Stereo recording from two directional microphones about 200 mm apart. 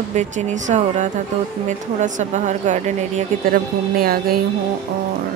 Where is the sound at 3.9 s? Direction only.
50° right (ahead or behind).